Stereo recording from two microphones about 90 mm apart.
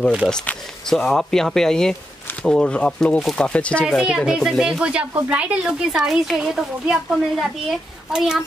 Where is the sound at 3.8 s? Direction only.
5° left (ahead or behind).